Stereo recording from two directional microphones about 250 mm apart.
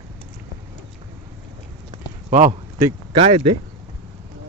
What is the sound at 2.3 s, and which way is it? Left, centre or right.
Speech, right.